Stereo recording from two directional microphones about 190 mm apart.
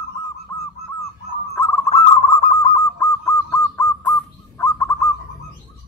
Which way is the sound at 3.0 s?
15° left (ahead or behind).